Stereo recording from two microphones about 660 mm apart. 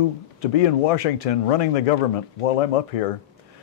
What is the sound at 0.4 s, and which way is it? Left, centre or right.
A man's voice, left.